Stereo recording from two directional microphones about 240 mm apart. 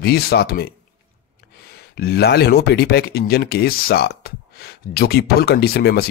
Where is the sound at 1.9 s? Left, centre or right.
Left.